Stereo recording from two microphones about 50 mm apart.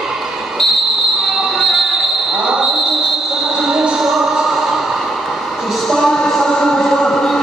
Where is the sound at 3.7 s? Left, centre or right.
Centre.